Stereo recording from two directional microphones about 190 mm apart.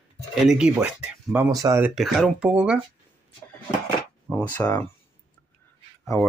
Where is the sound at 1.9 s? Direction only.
Centre (ahead or behind).